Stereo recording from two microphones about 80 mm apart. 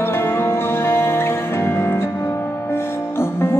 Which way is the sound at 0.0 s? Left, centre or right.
Left.